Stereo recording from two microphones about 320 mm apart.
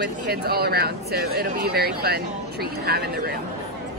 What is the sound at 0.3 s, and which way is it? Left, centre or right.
Speech, right.